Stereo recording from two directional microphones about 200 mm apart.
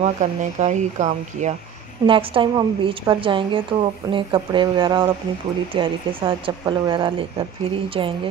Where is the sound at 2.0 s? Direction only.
25° right (ahead or behind).